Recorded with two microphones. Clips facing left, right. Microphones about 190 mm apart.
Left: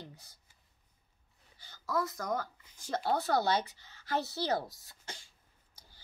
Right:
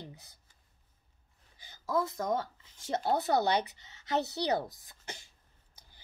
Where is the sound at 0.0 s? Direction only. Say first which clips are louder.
Right 2 dB; 20° right (ahead or behind).